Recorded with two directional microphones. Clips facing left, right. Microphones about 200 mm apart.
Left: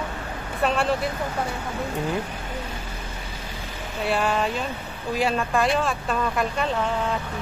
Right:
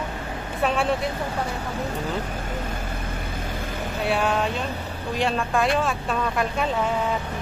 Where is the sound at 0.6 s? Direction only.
Centre (ahead or behind).